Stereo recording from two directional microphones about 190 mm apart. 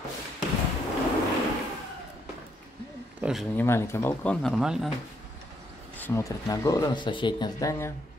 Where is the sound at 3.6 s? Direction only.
15° left (ahead or behind).